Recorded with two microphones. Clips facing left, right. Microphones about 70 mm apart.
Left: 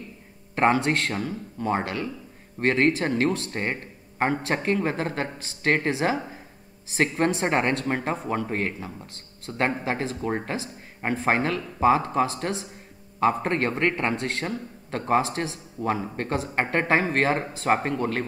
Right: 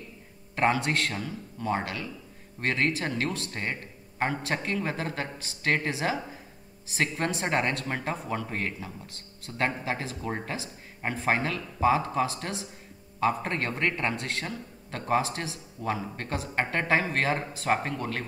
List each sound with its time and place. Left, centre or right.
0.6 s a man's voice: left
10.2 s a man's voice: left
13.2 s a man's voice: left